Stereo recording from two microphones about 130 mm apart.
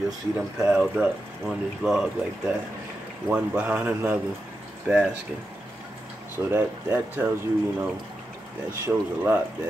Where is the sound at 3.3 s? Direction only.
10° right (ahead or behind).